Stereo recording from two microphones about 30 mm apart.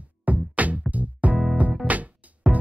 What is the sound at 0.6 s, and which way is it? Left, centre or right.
Music, right.